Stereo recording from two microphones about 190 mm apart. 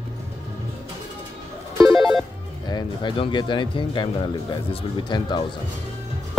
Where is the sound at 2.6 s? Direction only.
25° left (ahead or behind).